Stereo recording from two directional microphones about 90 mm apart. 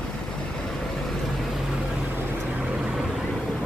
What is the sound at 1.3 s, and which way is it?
Vehicle, centre (ahead or behind).